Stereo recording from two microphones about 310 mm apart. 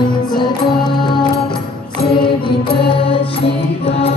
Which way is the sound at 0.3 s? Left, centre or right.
Centre.